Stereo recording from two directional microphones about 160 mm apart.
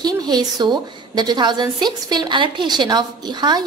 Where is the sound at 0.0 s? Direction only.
25° right (ahead or behind).